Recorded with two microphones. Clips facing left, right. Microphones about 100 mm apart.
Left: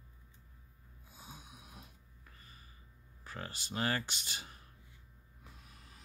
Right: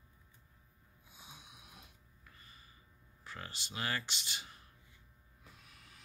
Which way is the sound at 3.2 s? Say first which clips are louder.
Left 2 dB; 40° left (ahead or behind).